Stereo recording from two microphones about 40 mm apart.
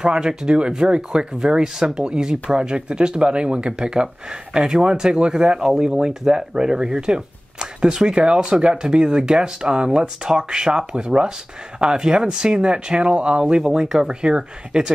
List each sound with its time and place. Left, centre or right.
0.0 s speech: centre